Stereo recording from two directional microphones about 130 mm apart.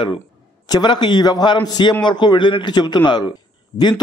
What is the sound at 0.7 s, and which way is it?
A man's voice, 35° left (ahead or behind).